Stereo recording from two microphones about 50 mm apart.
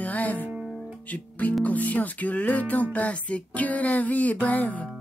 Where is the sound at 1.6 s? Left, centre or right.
Left.